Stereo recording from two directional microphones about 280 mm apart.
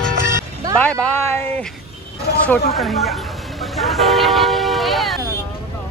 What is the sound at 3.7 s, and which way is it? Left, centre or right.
Vehicle, centre.